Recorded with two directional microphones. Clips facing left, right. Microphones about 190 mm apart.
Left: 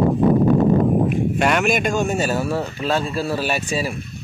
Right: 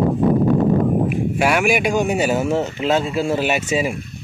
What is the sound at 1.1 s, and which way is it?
Speech, 5° right (ahead or behind).